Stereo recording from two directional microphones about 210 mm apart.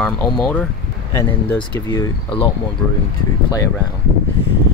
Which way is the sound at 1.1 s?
20° left (ahead or behind).